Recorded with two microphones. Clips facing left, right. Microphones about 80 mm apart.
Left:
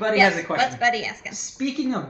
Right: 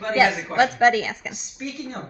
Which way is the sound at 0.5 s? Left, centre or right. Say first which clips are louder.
Right 4 dB; right.